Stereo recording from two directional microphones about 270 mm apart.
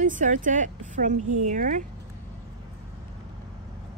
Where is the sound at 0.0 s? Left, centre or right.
Right.